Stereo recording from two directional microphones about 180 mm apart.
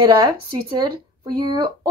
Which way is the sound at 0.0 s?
25° right (ahead or behind).